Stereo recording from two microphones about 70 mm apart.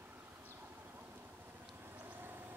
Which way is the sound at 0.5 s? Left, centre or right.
Right.